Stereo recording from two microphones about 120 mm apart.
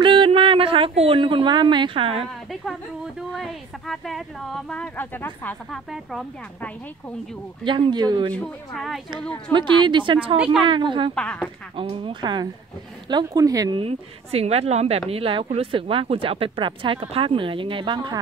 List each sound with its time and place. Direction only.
0.0 s a woman's voice: 45° right (ahead or behind)
2.6 s speech: centre (ahead or behind); by 5.8 s 15° left (ahead or behind)
7.6 s a woman's voice: 40° right (ahead or behind)
8.3 s speech: 10° left (ahead or behind)
9.5 s a woman's voice: 40° right (ahead or behind)
11.1 s speech: 10° left (ahead or behind)
11.7 s a woman's voice: 45° right (ahead or behind); by 13.7 s 30° right (ahead or behind)
13.7 s a woman's voice: 55° right (ahead or behind); by 18.2 s 40° right (ahead or behind)